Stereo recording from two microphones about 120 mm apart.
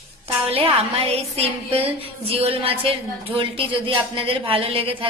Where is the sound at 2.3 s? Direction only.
55° right (ahead or behind).